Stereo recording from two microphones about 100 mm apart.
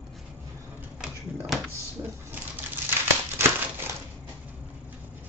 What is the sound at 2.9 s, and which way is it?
Crumpling, 20° right (ahead or behind).